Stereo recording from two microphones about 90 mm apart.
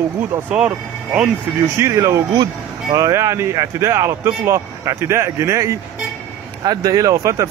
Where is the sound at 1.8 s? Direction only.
35° right (ahead or behind).